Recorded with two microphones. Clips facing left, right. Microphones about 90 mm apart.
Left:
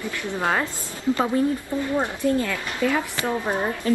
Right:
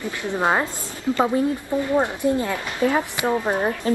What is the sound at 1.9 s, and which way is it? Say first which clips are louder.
Speech: right 2 dB; 20° right (ahead or behind).